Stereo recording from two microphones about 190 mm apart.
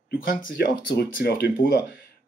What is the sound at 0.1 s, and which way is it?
Speech, 50° left (ahead or behind).